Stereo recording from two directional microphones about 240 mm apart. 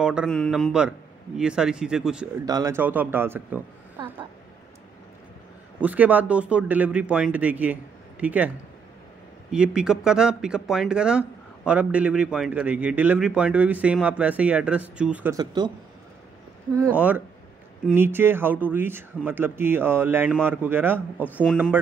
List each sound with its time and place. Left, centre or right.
0.0 s speech: centre
2.4 s speech: centre
5.8 s speech: centre
9.5 s speech: centre
17.8 s speech: centre
21.3 s speech: centre